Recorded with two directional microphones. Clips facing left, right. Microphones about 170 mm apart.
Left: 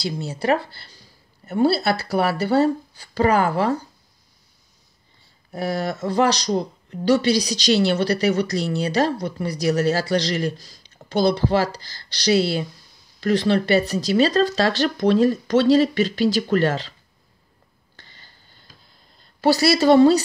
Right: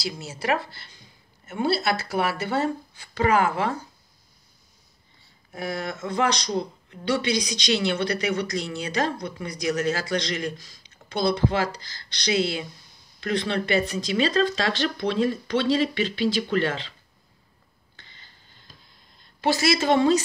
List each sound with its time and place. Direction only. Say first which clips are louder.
0.3 s speech: left 5 dB; 35° left (ahead or behind)
5.5 s speech: left 6 dB; 35° left (ahead or behind)
17.9 s a sound: left 3 dB; 40° left (ahead or behind)
19.4 s speech: left 6 dB; 35° left (ahead or behind)